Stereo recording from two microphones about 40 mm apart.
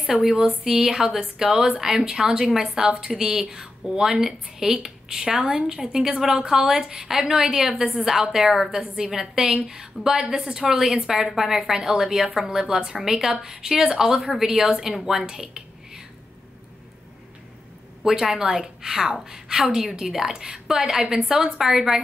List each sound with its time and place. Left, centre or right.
0.2 s a woman's voice: centre
7.7 s a woman's voice: right
8.0 s a woman's voice: centre
18.0 s a woman's voice: centre